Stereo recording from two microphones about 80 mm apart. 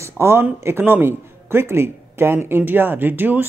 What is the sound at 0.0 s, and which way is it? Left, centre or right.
Speech, right.